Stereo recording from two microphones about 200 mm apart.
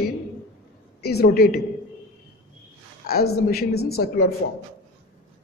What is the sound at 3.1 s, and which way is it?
Speech, 50° left (ahead or behind).